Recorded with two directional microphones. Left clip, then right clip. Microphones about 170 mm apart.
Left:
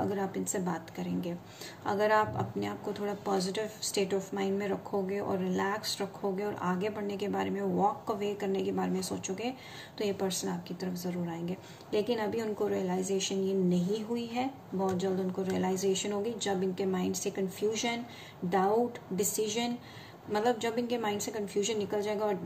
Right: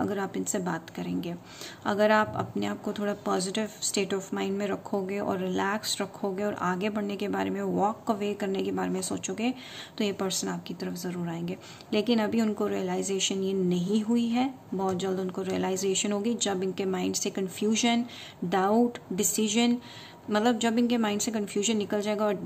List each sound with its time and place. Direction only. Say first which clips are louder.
0.1 s a woman's voice: right 3 dB; 40° right (ahead or behind)